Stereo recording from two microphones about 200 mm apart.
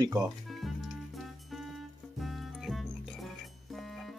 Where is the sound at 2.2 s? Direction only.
Centre (ahead or behind).